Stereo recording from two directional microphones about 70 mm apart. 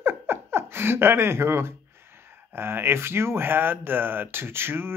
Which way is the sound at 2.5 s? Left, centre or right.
Right.